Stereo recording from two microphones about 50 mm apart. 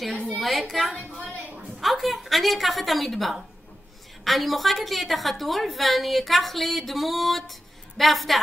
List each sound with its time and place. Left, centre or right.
0.3 s a woman's voice: centre
0.9 s a woman's voice: left
1.8 s a woman's voice: centre